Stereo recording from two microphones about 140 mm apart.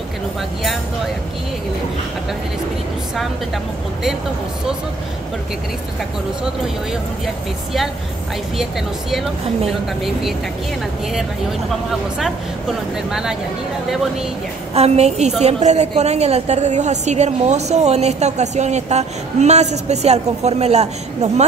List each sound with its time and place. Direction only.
9.7 s a woman's voice: centre (ahead or behind)
12.2 s a woman's voice: centre (ahead or behind)
14.7 s a woman's voice: 50° right (ahead or behind)